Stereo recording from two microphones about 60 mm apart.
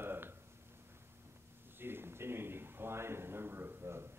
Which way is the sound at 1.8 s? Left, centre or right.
Right.